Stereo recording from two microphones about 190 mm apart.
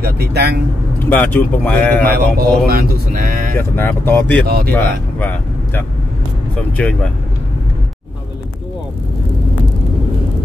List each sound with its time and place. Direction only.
0.0 s speech: 55° right (ahead or behind)
1.1 s speech: 10° left (ahead or behind)
2.1 s speech: 50° right (ahead or behind)
3.5 s speech: 10° left (ahead or behind)
4.5 s speech: 55° right (ahead or behind)
4.7 s speech: 10° left (ahead or behind)